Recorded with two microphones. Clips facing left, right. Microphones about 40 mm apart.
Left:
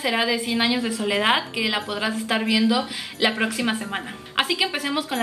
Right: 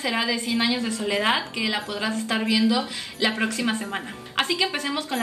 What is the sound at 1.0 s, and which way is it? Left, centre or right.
A woman's voice, left.